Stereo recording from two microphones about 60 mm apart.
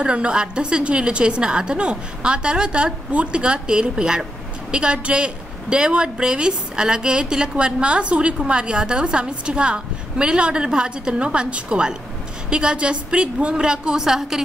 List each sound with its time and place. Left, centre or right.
0.0 s a woman's voice: centre